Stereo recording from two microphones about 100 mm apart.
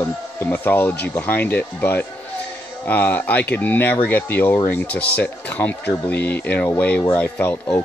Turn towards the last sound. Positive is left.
turn(degrees=20)  # may be behind; listen again after turning